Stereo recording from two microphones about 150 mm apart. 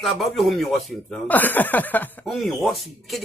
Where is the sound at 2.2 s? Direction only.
Centre (ahead or behind).